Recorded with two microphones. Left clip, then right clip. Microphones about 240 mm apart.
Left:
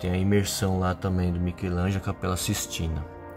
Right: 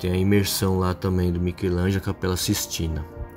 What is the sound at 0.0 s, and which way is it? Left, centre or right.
Speech, centre.